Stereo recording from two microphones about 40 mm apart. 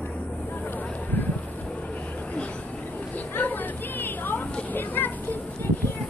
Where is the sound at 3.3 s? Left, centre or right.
Left.